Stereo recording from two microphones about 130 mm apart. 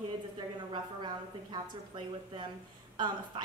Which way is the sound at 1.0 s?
35° right (ahead or behind).